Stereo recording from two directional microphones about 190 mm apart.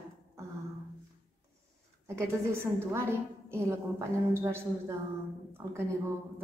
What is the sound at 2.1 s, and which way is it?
A woman's voice, 15° right (ahead or behind).